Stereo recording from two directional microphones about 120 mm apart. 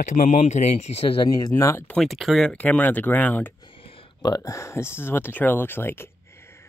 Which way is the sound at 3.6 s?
45° left (ahead or behind).